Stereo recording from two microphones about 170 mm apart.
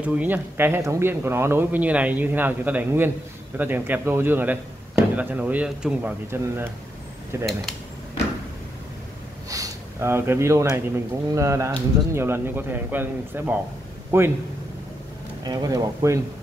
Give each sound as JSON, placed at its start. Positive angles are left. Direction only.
{"t": 0.0, "sound": "speech", "side_deg": -10}
{"t": 9.5, "sound": "speech", "side_deg": -20}
{"t": 15.4, "sound": "speech", "side_deg": -20}